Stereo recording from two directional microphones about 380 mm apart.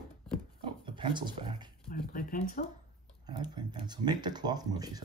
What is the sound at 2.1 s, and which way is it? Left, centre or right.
Speech, left.